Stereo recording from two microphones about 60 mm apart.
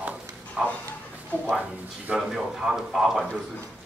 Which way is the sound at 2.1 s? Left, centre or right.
Centre.